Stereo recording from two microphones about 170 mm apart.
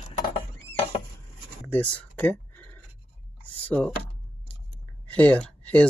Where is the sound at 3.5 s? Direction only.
10° left (ahead or behind).